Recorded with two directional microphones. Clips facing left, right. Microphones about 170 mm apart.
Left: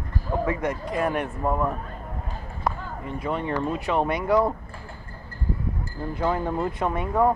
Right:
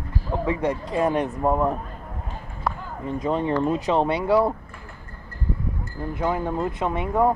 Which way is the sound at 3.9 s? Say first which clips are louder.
Even; 30° right (ahead or behind).